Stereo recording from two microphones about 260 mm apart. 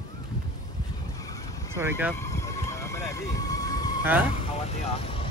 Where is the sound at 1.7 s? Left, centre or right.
Centre.